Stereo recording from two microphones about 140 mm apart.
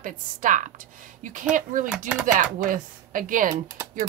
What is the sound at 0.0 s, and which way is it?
A woman's voice, 70° right (ahead or behind).